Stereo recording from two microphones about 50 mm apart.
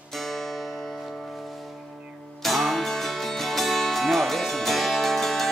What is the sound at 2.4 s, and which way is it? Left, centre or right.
Music, centre.